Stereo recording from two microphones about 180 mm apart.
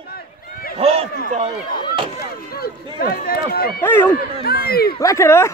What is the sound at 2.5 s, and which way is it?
Speech, 55° left (ahead or behind).